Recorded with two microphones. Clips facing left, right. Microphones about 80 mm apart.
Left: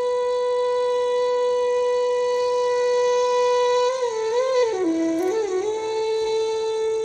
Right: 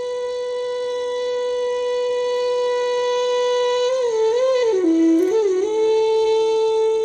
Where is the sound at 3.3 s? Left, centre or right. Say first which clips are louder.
Even; right.